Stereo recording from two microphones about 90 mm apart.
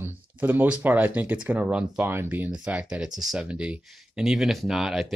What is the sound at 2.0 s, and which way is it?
Speech, 25° right (ahead or behind).